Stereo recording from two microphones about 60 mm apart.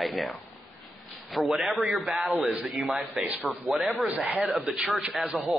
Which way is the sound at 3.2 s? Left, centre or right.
Right.